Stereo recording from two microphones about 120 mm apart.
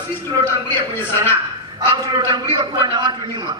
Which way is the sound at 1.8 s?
35° right (ahead or behind).